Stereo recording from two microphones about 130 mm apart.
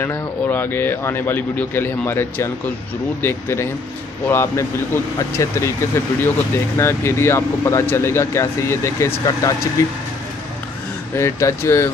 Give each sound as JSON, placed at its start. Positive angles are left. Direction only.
{"t": 0.0, "sound": "speech", "side_deg": 15}
{"t": 11.1, "sound": "speech", "side_deg": 20}